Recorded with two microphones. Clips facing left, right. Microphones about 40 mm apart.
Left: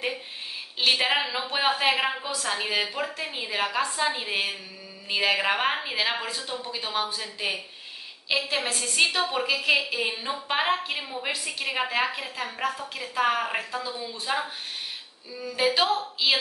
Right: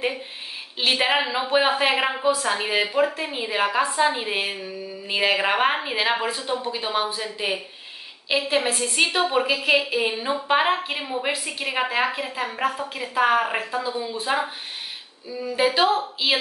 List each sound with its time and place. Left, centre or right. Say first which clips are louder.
0.7 s a woman's voice: right 2 dB; centre